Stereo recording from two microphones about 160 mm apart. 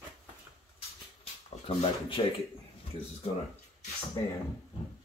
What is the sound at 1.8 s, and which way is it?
Speech, 35° left (ahead or behind).